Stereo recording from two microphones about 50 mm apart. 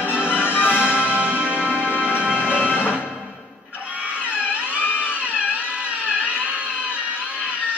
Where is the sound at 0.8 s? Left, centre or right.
Right.